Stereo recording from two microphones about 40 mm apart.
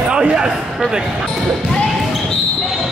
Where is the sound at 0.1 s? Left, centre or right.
Right.